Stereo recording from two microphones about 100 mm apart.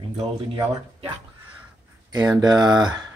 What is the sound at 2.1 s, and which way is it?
Speech, 45° right (ahead or behind).